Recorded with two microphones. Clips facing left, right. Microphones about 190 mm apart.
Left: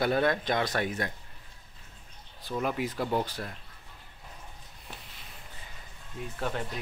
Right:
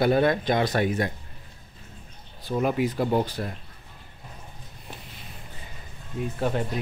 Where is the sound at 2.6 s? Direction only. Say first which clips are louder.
Right 7 dB; 5° right (ahead or behind).